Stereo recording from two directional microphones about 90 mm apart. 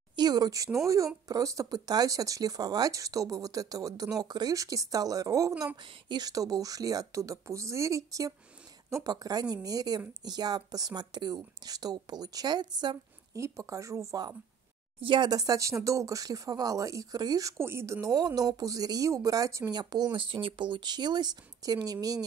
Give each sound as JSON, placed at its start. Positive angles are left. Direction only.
{"t": 0.1, "sound": "a woman's voice", "side_deg": -50}
{"t": 13.4, "sound": "speech", "side_deg": -35}
{"t": 15.0, "sound": "speech", "side_deg": -65}
{"t": 20.2, "sound": "a woman's voice", "side_deg": -75}